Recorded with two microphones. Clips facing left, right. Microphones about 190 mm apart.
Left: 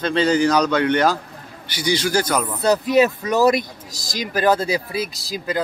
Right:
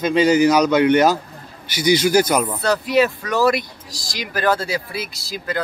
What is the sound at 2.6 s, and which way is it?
Speech, 20° left (ahead or behind).